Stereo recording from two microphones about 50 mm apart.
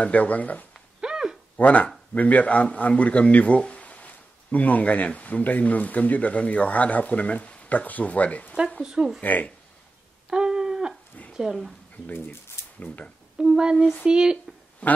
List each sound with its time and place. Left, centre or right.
0.0 s speech: left
1.0 s a sound: centre
1.6 s a man's voice: left
8.8 s speech: centre
9.2 s speech: left
10.3 s a sound: centre
11.3 s speech: centre
12.7 s speech: left
13.4 s speech: centre
14.8 s a man's voice: left